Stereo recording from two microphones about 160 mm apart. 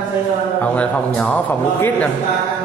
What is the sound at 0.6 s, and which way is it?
A man's voice, 10° left (ahead or behind).